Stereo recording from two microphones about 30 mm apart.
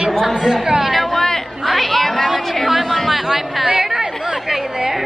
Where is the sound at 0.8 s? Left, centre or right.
Centre.